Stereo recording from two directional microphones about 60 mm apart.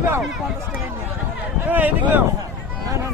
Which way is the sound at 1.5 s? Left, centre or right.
Right.